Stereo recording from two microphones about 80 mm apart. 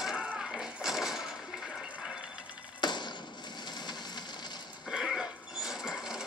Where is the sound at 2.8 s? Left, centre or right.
Left.